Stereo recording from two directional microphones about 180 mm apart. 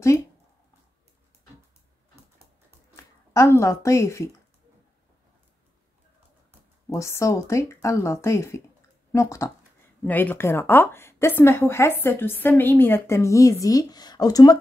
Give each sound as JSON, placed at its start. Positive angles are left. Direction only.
{"t": 3.3, "sound": "a woman's voice", "side_deg": 15}
{"t": 6.9, "sound": "a woman's voice", "side_deg": 15}